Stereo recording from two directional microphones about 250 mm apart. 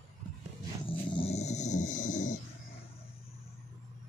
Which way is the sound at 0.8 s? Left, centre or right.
Left.